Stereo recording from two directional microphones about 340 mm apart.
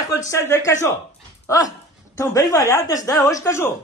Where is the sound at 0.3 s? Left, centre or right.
Centre.